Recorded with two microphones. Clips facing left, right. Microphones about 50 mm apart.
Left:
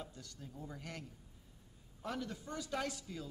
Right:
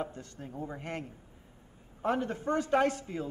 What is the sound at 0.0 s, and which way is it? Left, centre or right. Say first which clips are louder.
A man's voice: right 11 dB; right.